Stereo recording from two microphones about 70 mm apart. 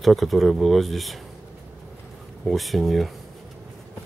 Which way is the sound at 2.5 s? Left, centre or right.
Centre.